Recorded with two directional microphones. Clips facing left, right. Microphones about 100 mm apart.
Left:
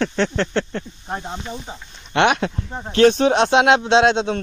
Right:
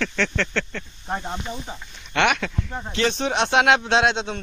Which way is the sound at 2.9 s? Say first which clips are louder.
Left 9 dB; 50° left (ahead or behind).